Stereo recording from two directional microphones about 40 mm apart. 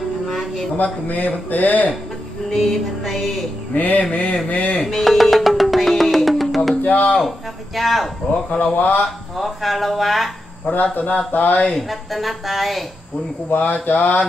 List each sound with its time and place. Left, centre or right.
0.3 s a sound: centre
1.0 s speech: left
2.5 s music: centre
3.7 s speech: left
4.1 s speech: left
4.8 s music: centre
6.8 s a sound: left
7.2 s music: centre
8.5 s speech: left
9.4 s music: centre
10.7 s speech: left
11.9 s music: centre
13.5 s speech: left